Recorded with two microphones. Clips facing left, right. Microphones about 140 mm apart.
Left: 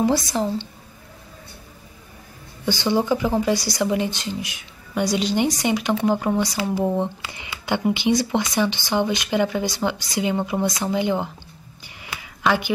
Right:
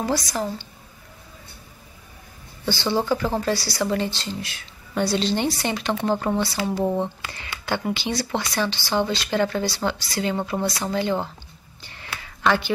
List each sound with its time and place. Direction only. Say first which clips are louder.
0.0 s a woman's voice: left 4 dB; 25° left (ahead or behind)
2.6 s speech: left 2 dB; 15° left (ahead or behind)
11.8 s a sound: even; 10° left (ahead or behind)